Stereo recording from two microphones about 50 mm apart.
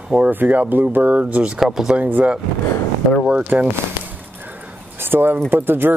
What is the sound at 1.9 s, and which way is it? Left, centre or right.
Speech, right.